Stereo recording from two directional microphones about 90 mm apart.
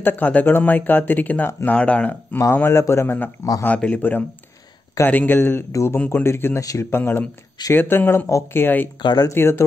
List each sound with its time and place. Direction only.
0.0 s speech: 20° left (ahead or behind)
2.3 s a man's voice: 25° left (ahead or behind)
3.6 s speech: 15° left (ahead or behind)
5.7 s a man's voice: 35° left (ahead or behind)
5.9 s speech: 20° left (ahead or behind)
6.6 s a man's voice: 40° left (ahead or behind)
6.9 s speech: 25° left (ahead or behind)
8.3 s a man's voice: 35° left (ahead or behind)
9.0 s speech: 50° left (ahead or behind)
9.3 s speech: 30° left (ahead or behind)